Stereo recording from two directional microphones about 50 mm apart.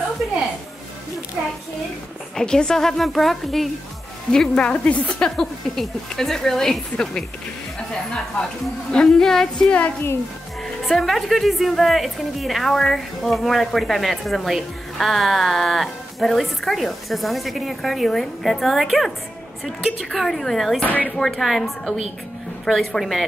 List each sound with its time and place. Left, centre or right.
2.3 s speech: centre
4.3 s a woman's voice: centre
5.2 s speech: centre
9.0 s speech: centre
10.9 s a woman's voice: centre
19.6 s a woman's voice: centre
20.1 s a woman's voice: centre
20.8 s speech: left
21.2 s a woman's voice: centre